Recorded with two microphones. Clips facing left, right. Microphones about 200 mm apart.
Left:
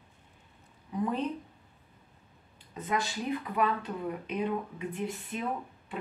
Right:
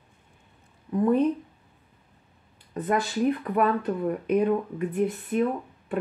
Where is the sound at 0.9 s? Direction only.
55° right (ahead or behind).